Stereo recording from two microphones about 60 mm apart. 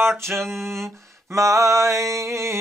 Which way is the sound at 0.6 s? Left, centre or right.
Right.